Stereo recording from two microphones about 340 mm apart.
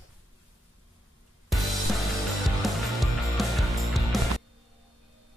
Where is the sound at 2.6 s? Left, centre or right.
Centre.